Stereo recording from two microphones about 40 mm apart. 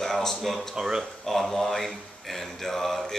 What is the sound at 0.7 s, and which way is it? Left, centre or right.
Speech, centre.